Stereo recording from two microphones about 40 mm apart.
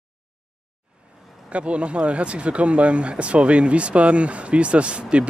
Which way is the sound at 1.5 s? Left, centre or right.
Right.